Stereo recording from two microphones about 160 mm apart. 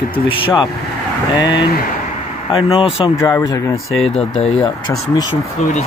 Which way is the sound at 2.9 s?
30° left (ahead or behind).